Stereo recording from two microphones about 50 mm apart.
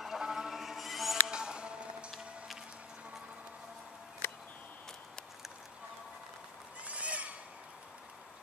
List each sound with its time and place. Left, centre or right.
0.0 s a sound: centre
1.3 s music: centre
2.0 s music: centre
6.8 s neigh: right